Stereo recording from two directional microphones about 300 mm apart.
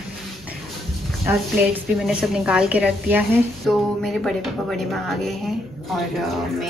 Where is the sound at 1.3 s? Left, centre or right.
Centre.